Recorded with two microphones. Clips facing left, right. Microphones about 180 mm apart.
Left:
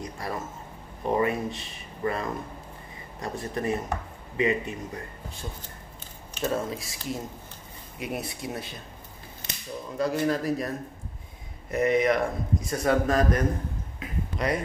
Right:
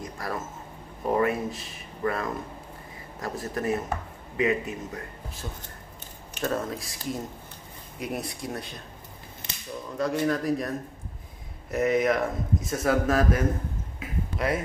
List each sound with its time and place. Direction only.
0.0 s a sound: centre (ahead or behind)
1.0 s a man's voice: centre (ahead or behind)
9.9 s a man's voice: centre (ahead or behind)
11.7 s a man's voice: centre (ahead or behind)